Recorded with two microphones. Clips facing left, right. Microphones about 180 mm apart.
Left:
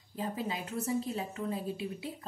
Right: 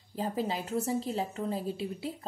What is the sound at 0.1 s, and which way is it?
A woman's voice, 30° right (ahead or behind).